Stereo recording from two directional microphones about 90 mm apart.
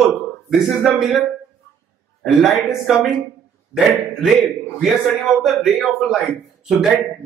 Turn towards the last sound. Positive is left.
turn(degrees=0)  # may be behind; listen again after turning